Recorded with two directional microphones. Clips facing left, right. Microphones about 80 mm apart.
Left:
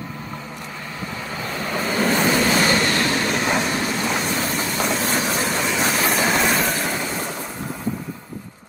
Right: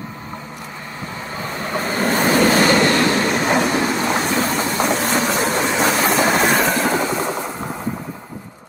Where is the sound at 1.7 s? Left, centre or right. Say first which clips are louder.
Right 1 dB; right.